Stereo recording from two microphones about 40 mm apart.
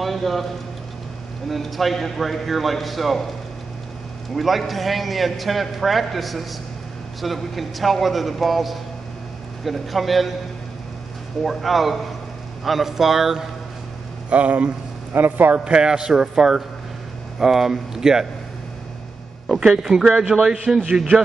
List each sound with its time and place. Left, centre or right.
0.0 s a sound: centre
1.5 s a man's voice: centre
4.4 s a man's voice: centre
11.4 s a man's voice: centre
14.3 s speech: right
15.1 s a man's voice: right
15.5 s a man's voice: right
19.6 s speech: centre